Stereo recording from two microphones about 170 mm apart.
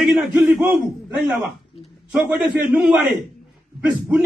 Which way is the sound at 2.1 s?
10° right (ahead or behind).